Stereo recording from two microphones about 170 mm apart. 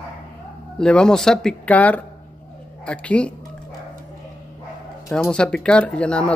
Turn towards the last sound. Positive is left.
turn(degrees=5)  # may be behind; listen again after turning